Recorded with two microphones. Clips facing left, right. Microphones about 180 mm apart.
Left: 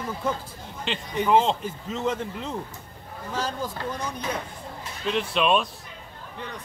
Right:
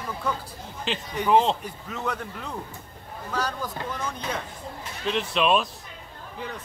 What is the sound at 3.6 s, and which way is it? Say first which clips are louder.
Speech: left 1 dB; 15° left (ahead or behind).